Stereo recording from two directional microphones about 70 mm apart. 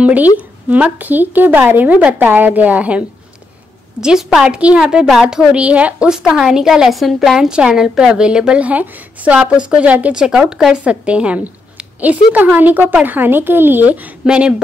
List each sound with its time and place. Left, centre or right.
0.0 s a woman's voice: right
4.0 s a woman's voice: centre
4.5 s a woman's voice: centre
4.8 s a woman's voice: centre